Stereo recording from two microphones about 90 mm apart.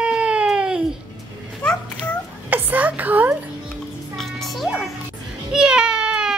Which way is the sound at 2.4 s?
20° right (ahead or behind).